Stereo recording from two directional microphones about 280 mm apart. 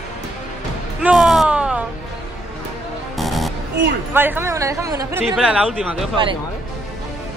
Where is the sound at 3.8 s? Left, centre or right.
Right.